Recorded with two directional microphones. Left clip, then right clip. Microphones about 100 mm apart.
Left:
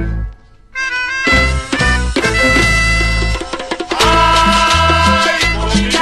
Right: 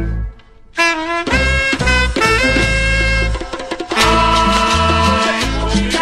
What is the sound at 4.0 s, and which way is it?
Salsa music, 25° left (ahead or behind).